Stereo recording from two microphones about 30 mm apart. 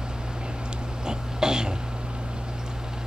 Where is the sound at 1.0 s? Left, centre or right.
Right.